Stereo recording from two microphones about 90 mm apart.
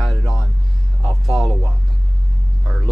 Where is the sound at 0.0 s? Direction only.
Centre (ahead or behind).